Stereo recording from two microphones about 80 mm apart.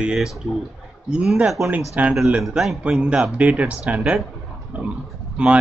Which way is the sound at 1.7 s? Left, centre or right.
Centre.